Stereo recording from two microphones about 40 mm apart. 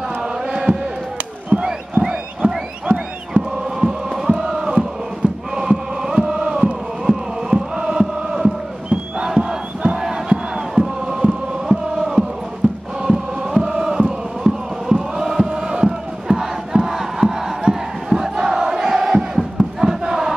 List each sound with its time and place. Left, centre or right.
0.2 s chant: centre
1.6 s a sound: right
3.8 s chant: centre
5.2 s chant: right
5.6 s chant: centre
9.2 s battle cry: centre
9.9 s crowd: centre
11.1 s chant: centre
16.3 s crowd: centre